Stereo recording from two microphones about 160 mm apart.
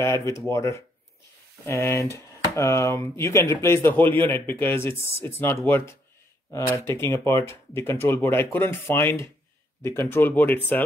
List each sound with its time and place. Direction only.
0.5 s speech: 20° left (ahead or behind)